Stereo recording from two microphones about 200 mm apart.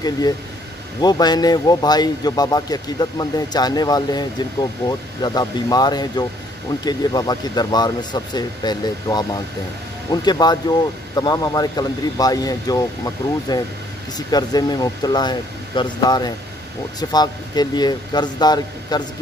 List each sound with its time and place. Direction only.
1.0 s speech: 20° left (ahead or behind)